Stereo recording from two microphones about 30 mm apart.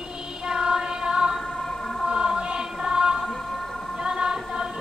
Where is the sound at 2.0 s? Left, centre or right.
Right.